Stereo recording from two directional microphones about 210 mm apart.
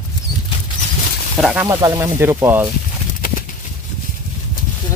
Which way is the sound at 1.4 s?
5° right (ahead or behind).